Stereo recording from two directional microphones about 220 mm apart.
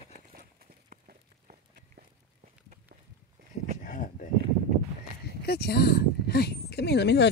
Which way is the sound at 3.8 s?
35° left (ahead or behind).